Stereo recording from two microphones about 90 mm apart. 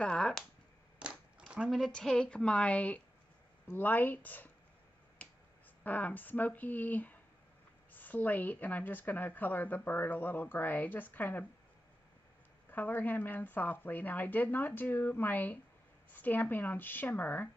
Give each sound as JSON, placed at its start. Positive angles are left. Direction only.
{"t": 0.0, "sound": "speech", "side_deg": 10}
{"t": 0.9, "sound": "a sound", "side_deg": -10}
{"t": 1.8, "sound": "a woman's voice", "side_deg": 5}
{"t": 5.9, "sound": "speech", "side_deg": 15}
{"t": 12.6, "sound": "speech", "side_deg": 20}